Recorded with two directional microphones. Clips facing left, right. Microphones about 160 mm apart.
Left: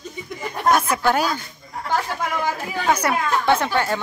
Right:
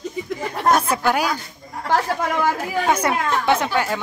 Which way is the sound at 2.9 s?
25° right (ahead or behind).